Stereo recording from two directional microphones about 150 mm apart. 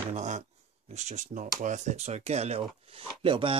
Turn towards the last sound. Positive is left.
turn(degrees=-35)  # may be behind; listen again after turning